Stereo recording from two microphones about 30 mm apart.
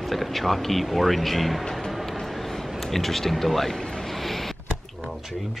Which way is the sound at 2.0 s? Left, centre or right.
Centre.